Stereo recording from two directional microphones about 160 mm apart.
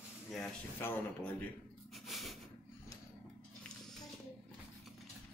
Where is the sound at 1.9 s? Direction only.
Centre (ahead or behind).